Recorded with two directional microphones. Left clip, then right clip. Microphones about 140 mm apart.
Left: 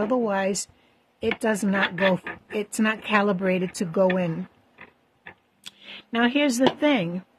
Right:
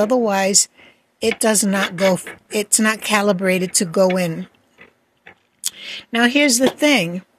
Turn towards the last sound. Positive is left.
turn(degrees=-25)  # may be behind; listen again after turning